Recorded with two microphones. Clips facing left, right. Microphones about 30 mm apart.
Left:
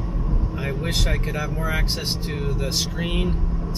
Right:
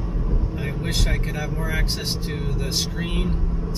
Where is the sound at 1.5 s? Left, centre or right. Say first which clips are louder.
Left 1 dB; centre.